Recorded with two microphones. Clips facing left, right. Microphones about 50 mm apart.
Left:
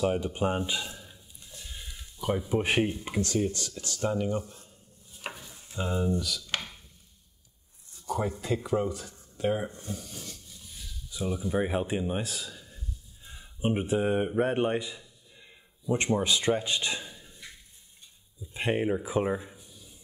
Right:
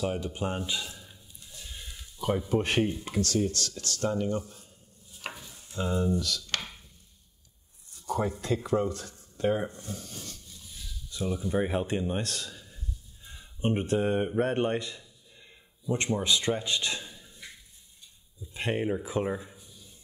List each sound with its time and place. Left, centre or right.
0.0 s speech: centre
1.6 s a sound: centre
2.2 s speech: centre
5.2 s stir: centre
5.8 s speech: centre
8.2 s speech: centre
9.8 s a sound: centre
11.1 s a man's voice: centre
15.9 s speech: left
18.5 s speech: centre